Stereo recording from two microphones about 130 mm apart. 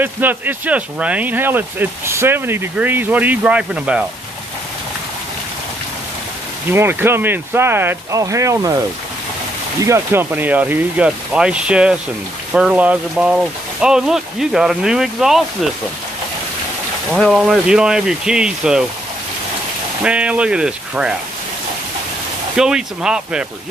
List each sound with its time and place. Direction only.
0.0 s speech: 15° right (ahead or behind)
6.7 s speech: 15° right (ahead or behind)
9.8 s speech: 20° right (ahead or behind); by 15.4 s 5° right (ahead or behind)
17.1 s speech: centre (ahead or behind)
20.0 s speech: 10° right (ahead or behind)
22.6 s speech: 5° right (ahead or behind)